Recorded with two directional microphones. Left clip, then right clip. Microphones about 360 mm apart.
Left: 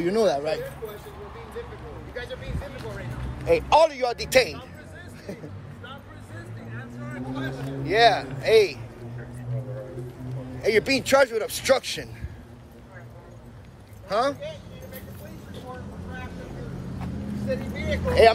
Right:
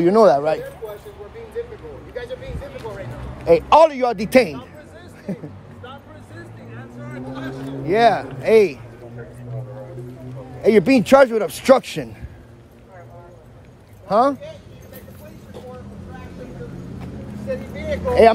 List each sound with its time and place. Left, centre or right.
0.0 s a man's voice: centre
2.1 s a man's voice: right
6.7 s speech: centre
10.6 s a man's voice: centre
14.0 s speech: centre
17.5 s speech: right